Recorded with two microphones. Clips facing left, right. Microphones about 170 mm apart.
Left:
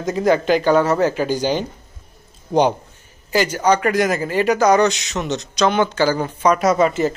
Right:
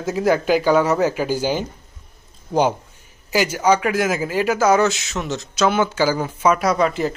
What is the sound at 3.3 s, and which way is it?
A man's voice, 10° right (ahead or behind).